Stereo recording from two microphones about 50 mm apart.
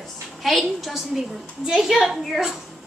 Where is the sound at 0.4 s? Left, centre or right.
Centre.